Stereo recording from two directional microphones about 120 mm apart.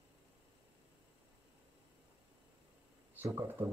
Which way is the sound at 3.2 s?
20° right (ahead or behind).